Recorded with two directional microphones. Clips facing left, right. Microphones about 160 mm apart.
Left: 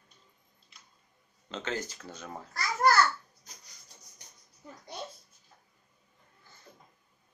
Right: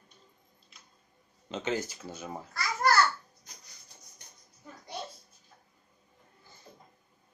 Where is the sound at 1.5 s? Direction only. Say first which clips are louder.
Right 3 dB; 15° right (ahead or behind).